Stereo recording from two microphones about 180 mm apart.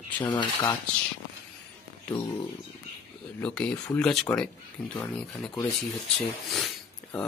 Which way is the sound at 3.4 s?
5° left (ahead or behind).